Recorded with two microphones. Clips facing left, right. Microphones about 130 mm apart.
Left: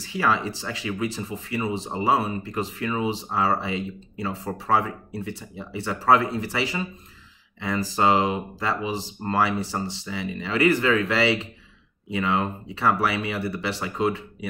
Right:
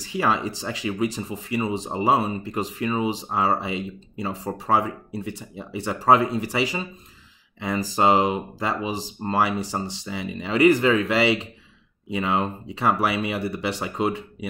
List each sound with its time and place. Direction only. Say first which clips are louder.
0.2 s speech: even; 20° right (ahead or behind)